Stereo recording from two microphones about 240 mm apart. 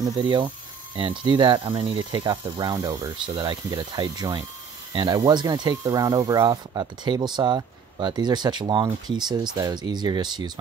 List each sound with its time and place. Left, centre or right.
0.0 s speech: centre